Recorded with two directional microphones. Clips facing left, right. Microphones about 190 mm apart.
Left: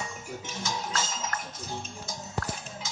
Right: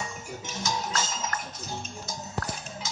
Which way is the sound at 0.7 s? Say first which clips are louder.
Right 2 dB; 40° right (ahead or behind).